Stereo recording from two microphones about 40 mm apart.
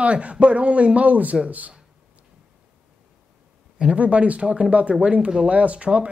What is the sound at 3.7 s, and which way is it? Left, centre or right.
Speech, right.